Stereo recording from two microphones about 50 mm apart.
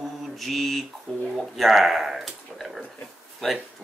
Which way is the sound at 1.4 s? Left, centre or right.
Centre.